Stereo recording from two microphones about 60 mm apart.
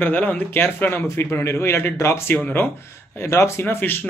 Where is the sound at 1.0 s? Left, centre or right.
Left.